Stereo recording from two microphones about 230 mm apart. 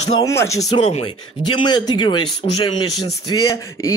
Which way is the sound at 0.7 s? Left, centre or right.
Left.